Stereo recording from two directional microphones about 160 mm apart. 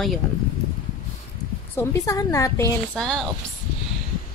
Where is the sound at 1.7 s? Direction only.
20° left (ahead or behind).